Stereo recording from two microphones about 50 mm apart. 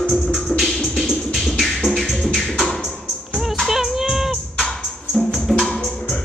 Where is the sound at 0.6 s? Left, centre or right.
Centre.